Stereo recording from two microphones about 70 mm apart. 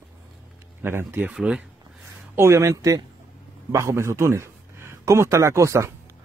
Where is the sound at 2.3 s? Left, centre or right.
Right.